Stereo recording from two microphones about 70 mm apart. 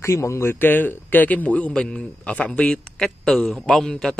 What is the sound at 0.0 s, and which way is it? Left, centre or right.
A man's voice, left.